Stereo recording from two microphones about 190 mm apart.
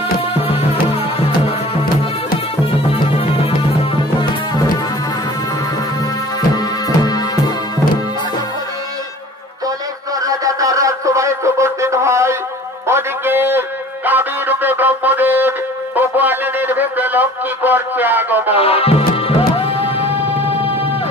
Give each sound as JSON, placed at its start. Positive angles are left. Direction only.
{"t": 0.5, "sound": "music", "side_deg": 30}
{"t": 6.5, "sound": "music", "side_deg": 20}
{"t": 10.2, "sound": "a sound", "side_deg": -20}
{"t": 18.5, "sound": "music", "side_deg": 30}